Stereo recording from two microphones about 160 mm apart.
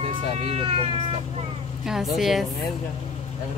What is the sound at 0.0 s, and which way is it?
Speech, 35° right (ahead or behind).